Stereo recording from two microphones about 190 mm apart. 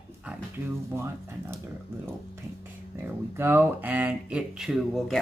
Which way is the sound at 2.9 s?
15° right (ahead or behind).